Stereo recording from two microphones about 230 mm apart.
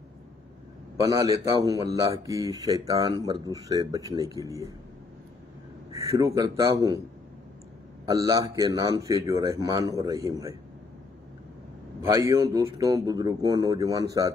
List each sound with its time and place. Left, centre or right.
0.9 s speech: centre
5.9 s a man's voice: centre
8.0 s speech: centre
12.0 s speech: centre